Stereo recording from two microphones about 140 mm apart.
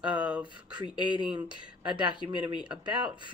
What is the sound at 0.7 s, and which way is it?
Speech, 35° right (ahead or behind).